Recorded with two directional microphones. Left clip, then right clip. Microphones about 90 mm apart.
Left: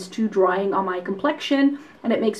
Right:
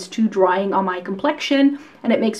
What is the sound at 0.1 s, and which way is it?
Speech, 35° right (ahead or behind).